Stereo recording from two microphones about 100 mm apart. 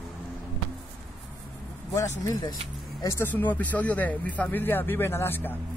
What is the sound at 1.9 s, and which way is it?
Speech, 35° left (ahead or behind).